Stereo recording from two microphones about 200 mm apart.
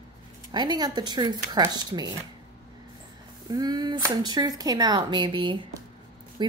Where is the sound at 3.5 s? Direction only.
20° right (ahead or behind).